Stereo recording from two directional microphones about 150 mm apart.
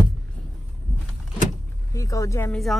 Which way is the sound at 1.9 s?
20° left (ahead or behind).